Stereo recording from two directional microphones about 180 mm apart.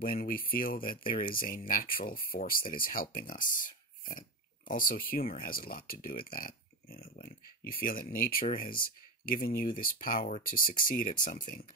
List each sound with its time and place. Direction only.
0.0 s speech: 55° left (ahead or behind)